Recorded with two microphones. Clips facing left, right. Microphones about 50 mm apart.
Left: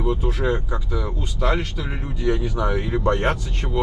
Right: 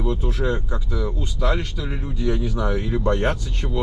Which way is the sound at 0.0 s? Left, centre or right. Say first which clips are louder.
Left 1 dB; left.